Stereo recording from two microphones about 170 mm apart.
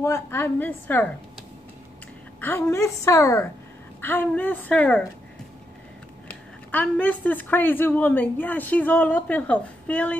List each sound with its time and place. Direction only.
0.0 s a woman's voice: 15° left (ahead or behind)
2.4 s a woman's voice: 15° left (ahead or behind)
6.2 s a woman's voice: 10° left (ahead or behind)